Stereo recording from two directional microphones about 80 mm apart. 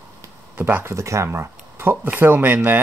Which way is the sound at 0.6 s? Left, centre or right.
Right.